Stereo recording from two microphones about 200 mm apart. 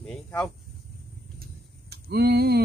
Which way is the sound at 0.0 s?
5° left (ahead or behind).